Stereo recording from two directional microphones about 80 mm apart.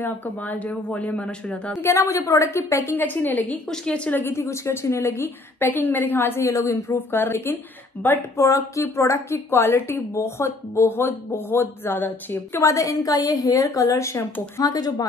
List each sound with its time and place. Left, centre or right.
0.0 s a woman's voice: left
1.8 s a woman's voice: left
3.7 s a woman's voice: centre
4.1 s a woman's voice: left
8.4 s a woman's voice: left
12.7 s a woman's voice: left
14.6 s a woman's voice: left